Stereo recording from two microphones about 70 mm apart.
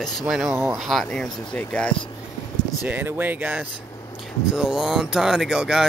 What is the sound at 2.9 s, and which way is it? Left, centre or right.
Speech, right.